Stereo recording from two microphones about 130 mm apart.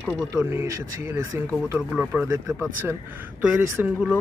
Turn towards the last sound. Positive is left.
turn(degrees=-10)  # may be behind; listen again after turning